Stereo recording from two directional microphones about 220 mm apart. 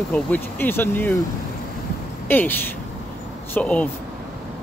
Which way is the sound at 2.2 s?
10° left (ahead or behind).